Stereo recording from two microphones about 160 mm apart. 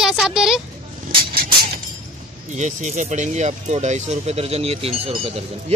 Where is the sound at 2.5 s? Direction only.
50° right (ahead or behind).